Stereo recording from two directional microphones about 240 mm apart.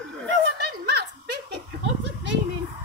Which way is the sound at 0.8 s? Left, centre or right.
Right.